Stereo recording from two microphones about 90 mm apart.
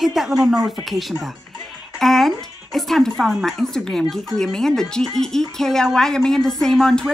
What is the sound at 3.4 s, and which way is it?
Speech, 5° left (ahead or behind).